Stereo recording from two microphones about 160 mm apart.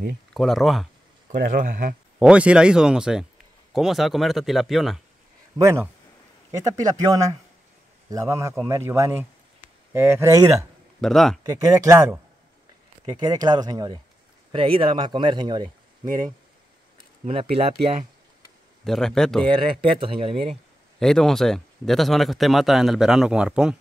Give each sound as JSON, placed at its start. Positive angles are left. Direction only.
{"t": 0.3, "sound": "speech", "side_deg": 0}
{"t": 1.5, "sound": "speech", "side_deg": -60}
{"t": 2.1, "sound": "speech", "side_deg": -10}
{"t": 5.6, "sound": "speech", "side_deg": -20}
{"t": 11.0, "sound": "speech", "side_deg": 0}
{"t": 11.4, "sound": "speech", "side_deg": -20}
{"t": 17.2, "sound": "speech", "side_deg": -35}
{"t": 18.9, "sound": "speech", "side_deg": 5}
{"t": 19.4, "sound": "speech", "side_deg": -30}
{"t": 21.0, "sound": "speech", "side_deg": 5}